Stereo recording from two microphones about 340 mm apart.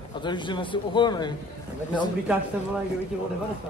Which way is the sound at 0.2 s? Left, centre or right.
Centre.